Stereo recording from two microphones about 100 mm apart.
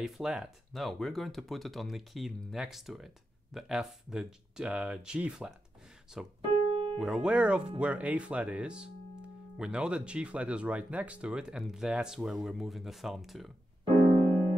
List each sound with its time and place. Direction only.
0.0 s speech: 5° right (ahead or behind)
6.5 s piano: 65° right (ahead or behind)
7.0 s speech: 5° right (ahead or behind)
13.9 s music: 20° left (ahead or behind)